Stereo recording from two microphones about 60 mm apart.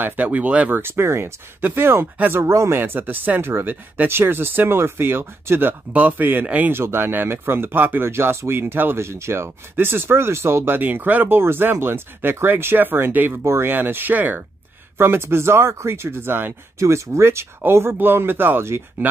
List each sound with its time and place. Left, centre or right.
0.0 s speech: right
0.7 s speech: right
2.4 s speech: right
2.8 s speech: right
6.7 s speech: right
10.8 s speech: right
13.3 s speech: right
13.7 s speech: right
15.0 s speech: right
16.8 s speech: right